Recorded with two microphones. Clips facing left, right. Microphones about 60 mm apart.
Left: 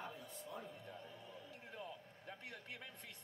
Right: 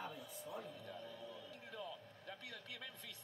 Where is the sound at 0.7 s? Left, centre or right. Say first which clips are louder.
Right 2 dB; left.